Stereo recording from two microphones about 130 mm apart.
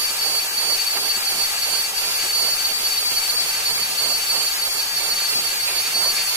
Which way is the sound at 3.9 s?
25° right (ahead or behind).